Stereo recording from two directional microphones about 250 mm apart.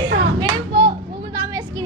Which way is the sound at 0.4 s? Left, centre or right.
Centre.